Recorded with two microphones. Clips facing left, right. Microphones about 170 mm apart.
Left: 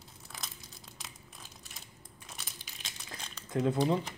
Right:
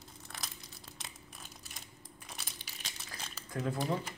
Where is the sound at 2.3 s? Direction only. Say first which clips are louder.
Even; centre (ahead or behind).